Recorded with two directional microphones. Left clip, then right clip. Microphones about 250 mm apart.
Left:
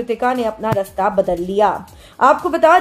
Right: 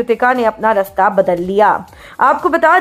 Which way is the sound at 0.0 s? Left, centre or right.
Centre.